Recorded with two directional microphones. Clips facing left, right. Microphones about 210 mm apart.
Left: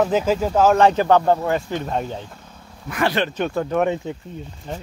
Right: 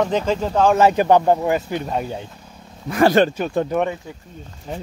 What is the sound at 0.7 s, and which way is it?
Speech, 10° right (ahead or behind).